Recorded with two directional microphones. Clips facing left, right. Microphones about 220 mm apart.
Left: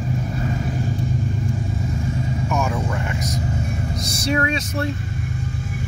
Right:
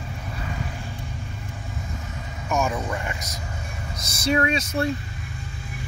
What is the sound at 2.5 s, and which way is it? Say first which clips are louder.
Speech: right 2 dB; centre (ahead or behind).